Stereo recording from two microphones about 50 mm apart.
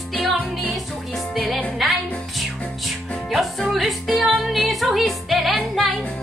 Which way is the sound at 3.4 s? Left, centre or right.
Centre.